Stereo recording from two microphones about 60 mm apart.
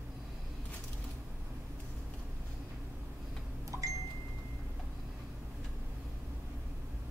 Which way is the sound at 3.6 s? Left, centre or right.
Right.